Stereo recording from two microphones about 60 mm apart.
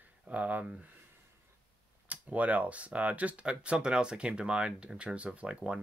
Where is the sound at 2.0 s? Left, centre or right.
Right.